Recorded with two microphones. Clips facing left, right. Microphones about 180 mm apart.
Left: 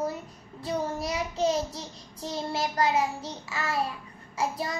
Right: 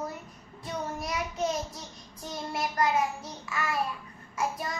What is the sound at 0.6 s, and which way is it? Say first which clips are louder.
Child singing: left 5 dB; 30° left (ahead or behind).